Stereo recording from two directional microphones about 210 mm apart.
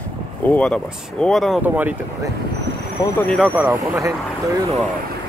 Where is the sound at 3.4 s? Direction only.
10° right (ahead or behind).